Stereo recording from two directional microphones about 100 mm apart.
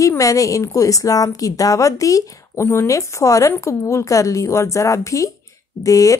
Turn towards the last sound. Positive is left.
turn(degrees=35)  # may be behind; listen again after turning